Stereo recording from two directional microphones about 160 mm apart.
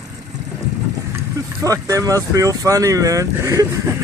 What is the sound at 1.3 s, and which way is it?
Speech, 20° right (ahead or behind).